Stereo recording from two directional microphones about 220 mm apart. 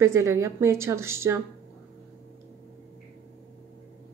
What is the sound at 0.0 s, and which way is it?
Speech, 10° right (ahead or behind).